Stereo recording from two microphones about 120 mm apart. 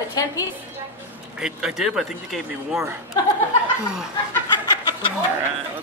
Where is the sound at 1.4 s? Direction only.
5° right (ahead or behind).